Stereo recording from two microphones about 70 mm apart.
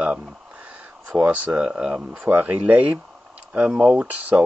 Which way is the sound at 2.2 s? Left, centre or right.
Right.